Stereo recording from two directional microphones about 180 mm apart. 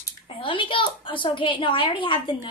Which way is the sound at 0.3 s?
30° left (ahead or behind).